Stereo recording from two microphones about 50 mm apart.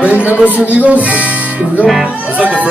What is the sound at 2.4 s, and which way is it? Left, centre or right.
Speech, right.